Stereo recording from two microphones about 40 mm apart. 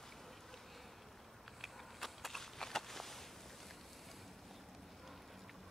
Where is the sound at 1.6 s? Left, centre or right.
Centre.